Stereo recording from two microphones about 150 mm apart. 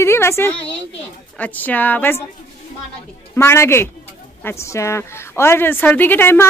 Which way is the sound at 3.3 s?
15° left (ahead or behind).